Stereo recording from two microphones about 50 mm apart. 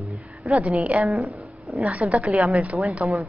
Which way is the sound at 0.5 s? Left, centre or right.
Right.